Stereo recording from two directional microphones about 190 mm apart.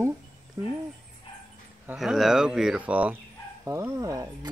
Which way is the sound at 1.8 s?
Centre (ahead or behind).